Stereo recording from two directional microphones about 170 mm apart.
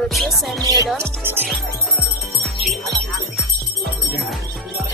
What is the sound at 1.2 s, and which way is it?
Speech, 15° right (ahead or behind).